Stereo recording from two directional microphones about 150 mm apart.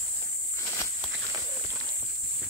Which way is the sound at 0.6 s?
20° left (ahead or behind).